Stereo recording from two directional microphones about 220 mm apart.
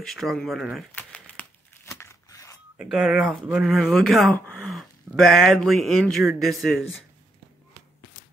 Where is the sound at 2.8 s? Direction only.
5° right (ahead or behind).